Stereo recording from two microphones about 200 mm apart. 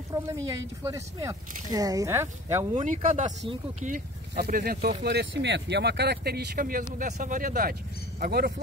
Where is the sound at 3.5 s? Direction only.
35° right (ahead or behind).